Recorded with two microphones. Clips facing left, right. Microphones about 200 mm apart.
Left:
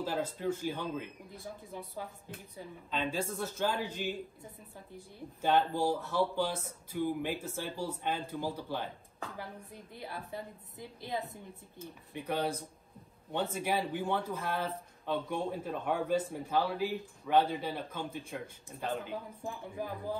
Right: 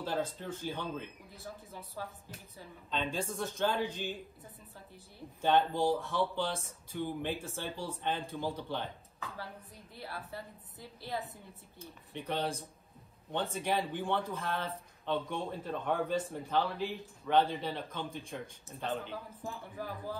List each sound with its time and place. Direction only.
0.0 s speech: 10° left (ahead or behind)
2.5 s speech: 5° left (ahead or behind)
9.9 s speech: 15° left (ahead or behind)